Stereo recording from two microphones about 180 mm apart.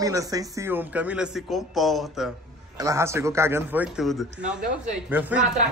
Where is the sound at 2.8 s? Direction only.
15° right (ahead or behind).